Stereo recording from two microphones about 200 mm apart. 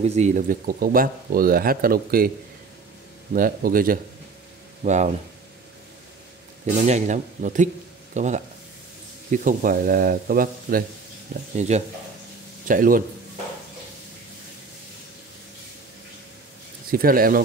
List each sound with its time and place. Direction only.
0.0 s speech: 35° right (ahead or behind)
3.3 s speech: 45° right (ahead or behind)
6.6 s speech: 35° right (ahead or behind)
11.5 s speech: 35° right (ahead or behind)
16.9 s speech: 45° right (ahead or behind)